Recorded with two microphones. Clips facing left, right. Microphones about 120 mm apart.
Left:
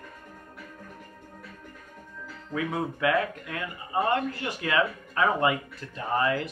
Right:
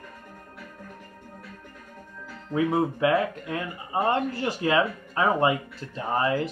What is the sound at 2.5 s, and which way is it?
Speech, 30° right (ahead or behind).